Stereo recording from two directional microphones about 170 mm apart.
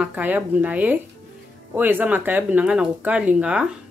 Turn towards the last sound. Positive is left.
turn(degrees=-5)  # may be behind; listen again after turning